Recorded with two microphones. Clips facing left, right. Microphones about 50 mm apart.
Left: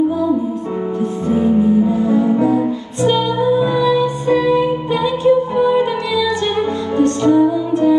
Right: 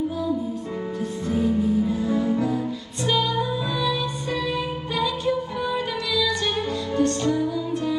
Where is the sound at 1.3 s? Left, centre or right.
Left.